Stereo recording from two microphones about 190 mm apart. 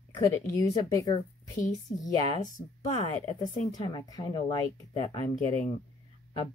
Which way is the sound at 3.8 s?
25° left (ahead or behind).